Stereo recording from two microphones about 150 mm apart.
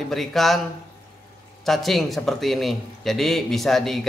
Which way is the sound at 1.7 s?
Centre (ahead or behind).